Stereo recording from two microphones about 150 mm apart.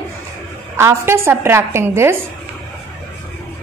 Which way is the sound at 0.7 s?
15° right (ahead or behind).